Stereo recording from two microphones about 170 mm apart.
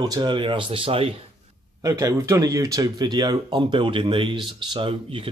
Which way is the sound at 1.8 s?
20° right (ahead or behind).